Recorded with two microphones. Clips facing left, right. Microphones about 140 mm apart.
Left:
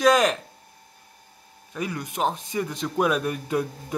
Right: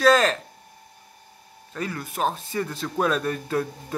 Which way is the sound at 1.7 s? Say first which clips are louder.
Even; 15° left (ahead or behind).